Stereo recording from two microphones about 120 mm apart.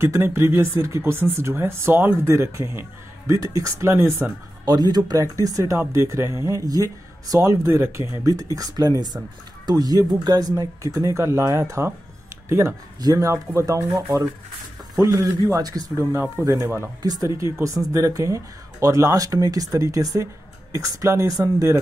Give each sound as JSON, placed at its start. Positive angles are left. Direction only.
{"t": 0.0, "sound": "speech", "side_deg": -20}
{"t": 4.6, "sound": "speech", "side_deg": -35}
{"t": 17.0, "sound": "speech", "side_deg": -30}